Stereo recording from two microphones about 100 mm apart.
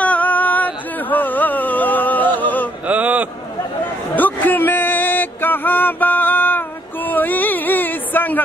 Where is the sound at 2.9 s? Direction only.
15° right (ahead or behind).